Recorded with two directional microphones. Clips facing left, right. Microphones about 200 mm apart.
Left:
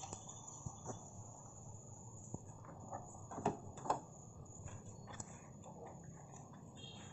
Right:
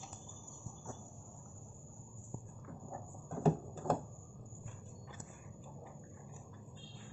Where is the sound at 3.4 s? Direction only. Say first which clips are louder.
Right 8 dB; 45° right (ahead or behind).